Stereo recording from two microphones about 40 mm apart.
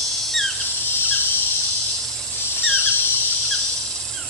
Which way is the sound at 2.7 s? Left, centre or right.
Left.